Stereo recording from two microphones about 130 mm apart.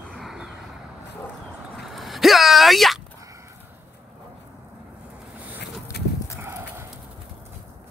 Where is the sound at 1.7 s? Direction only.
Centre (ahead or behind).